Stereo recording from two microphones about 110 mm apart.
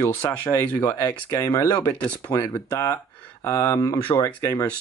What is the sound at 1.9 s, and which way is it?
Speech, 15° left (ahead or behind).